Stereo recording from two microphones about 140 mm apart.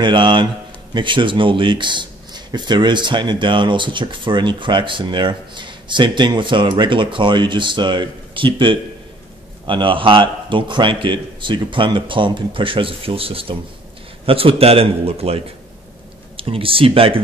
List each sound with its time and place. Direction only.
0.0 s a man's voice: 35° right (ahead or behind)